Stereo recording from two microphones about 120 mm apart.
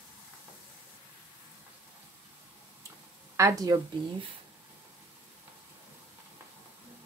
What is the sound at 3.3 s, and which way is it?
Speech, 30° right (ahead or behind).